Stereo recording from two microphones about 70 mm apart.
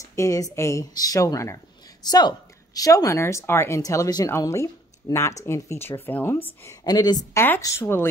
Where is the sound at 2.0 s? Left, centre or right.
Left.